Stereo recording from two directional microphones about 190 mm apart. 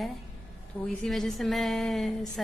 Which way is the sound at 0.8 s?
Centre (ahead or behind).